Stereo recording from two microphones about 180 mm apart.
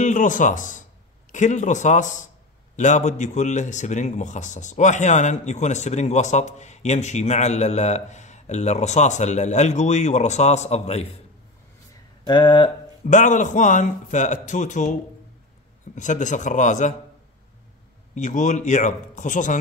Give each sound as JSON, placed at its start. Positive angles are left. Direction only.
{"t": 0.0, "sound": "a man's voice", "side_deg": 45}
{"t": 12.3, "sound": "speech", "side_deg": 25}
{"t": 13.0, "sound": "a man's voice", "side_deg": 45}
{"t": 18.1, "sound": "a man's voice", "side_deg": 45}